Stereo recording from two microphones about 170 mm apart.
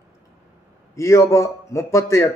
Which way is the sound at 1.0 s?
20° left (ahead or behind).